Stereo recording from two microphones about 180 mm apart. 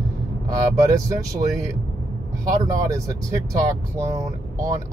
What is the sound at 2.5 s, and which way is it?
Speech, 20° right (ahead or behind).